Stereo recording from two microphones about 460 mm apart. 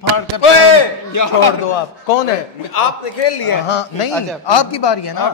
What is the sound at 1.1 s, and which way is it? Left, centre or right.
Speech, left.